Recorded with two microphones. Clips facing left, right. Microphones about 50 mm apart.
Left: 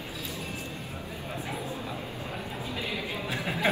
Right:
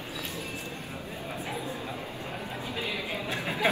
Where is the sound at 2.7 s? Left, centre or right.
Right.